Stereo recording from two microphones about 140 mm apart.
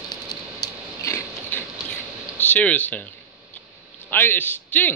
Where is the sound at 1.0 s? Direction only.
20° left (ahead or behind).